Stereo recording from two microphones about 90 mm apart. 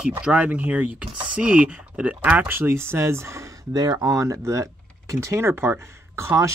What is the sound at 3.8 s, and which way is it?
Speech, 45° right (ahead or behind).